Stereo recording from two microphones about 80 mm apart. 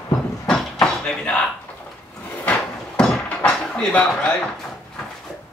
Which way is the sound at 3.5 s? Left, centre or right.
Centre.